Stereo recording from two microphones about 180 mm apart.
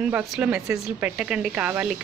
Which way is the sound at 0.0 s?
10° right (ahead or behind).